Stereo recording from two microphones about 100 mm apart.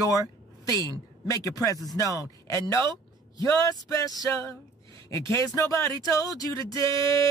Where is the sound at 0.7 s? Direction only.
35° left (ahead or behind).